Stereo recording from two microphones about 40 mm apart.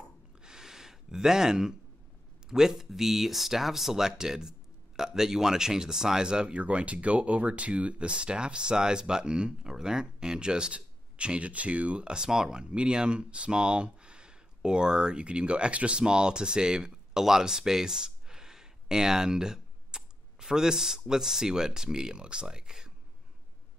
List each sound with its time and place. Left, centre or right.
0.4 s gasp: centre
2.5 s speech: centre
6.5 s speech: right
12.2 s speech: centre